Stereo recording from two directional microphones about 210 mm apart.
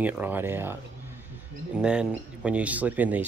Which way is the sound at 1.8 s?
5° right (ahead or behind).